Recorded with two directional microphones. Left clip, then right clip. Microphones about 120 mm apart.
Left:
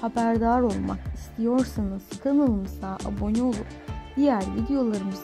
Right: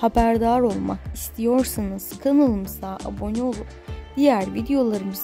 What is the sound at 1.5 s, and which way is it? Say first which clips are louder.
Speech: right 5 dB; 25° right (ahead or behind).